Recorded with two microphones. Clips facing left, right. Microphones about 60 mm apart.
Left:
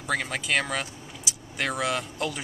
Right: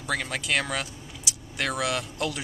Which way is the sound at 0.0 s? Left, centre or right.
Centre.